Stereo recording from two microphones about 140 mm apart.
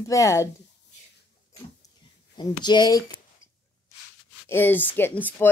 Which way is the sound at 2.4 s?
30° left (ahead or behind).